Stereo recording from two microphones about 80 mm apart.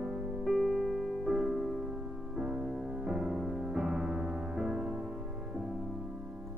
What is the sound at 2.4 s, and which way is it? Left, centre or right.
Music, centre.